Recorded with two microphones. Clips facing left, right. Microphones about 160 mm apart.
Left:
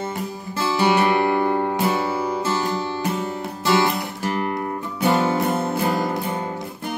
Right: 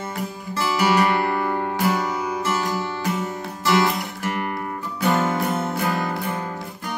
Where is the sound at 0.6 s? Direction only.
25° left (ahead or behind).